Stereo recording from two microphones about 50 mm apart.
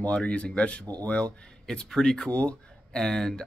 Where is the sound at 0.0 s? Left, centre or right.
Left.